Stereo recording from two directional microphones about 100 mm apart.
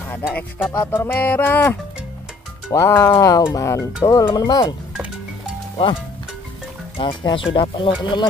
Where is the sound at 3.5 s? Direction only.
30° left (ahead or behind).